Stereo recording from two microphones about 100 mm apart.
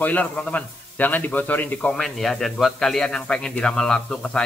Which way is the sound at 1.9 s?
5° left (ahead or behind).